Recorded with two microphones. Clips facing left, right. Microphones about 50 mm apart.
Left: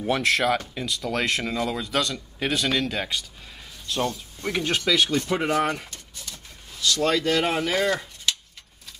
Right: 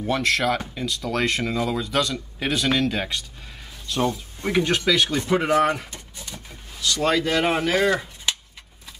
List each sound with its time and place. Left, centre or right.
0.0 s speech: centre
4.0 s speech: centre
4.6 s speech: centre
5.9 s pigeon: centre
6.8 s speech: centre